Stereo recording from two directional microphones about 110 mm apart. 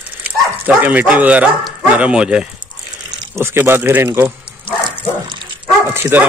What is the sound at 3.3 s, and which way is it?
Speech, 20° right (ahead or behind).